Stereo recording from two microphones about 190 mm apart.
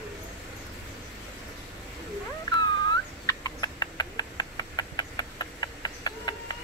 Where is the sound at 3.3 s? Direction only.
20° left (ahead or behind).